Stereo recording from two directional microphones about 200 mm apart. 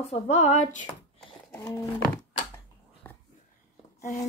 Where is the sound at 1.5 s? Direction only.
15° left (ahead or behind).